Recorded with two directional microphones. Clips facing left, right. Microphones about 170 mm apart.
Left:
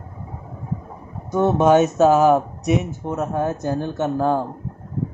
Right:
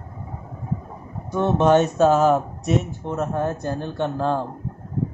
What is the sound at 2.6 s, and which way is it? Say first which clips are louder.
Speech: left 2 dB; 15° left (ahead or behind).